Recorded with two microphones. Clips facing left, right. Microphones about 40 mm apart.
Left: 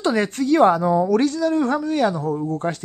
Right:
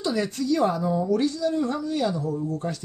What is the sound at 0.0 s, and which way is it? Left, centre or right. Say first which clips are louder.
A woman's voice: left 6 dB; left.